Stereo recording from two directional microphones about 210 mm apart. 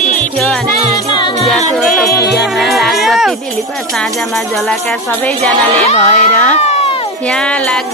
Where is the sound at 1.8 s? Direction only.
Centre (ahead or behind).